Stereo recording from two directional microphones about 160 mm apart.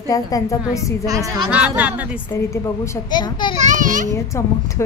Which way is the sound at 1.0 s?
20° right (ahead or behind).